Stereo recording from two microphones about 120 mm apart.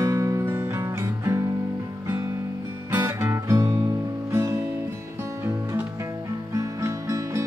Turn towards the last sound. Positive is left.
turn(degrees=-25)  # may be behind; listen again after turning